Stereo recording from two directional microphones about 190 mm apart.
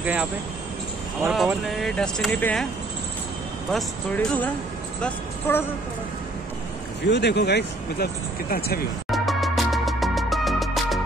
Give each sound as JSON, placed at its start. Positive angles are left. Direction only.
{"t": 0.0, "sound": "speech", "side_deg": -10}
{"t": 1.3, "sound": "speech", "side_deg": 0}
{"t": 3.7, "sound": "speech", "side_deg": 5}
{"t": 5.5, "sound": "a woman's voice", "side_deg": 10}
{"t": 7.1, "sound": "speech", "side_deg": 60}
{"t": 9.1, "sound": "music", "side_deg": 0}